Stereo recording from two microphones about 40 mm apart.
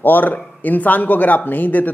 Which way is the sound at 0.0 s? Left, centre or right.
Left.